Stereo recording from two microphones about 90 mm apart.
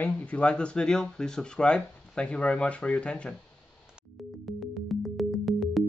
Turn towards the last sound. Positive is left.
turn(degrees=0)  # may be behind; listen again after turning